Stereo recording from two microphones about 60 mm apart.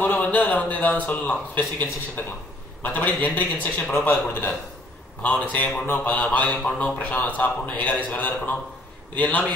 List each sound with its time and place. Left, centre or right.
0.0 s a man's voice: left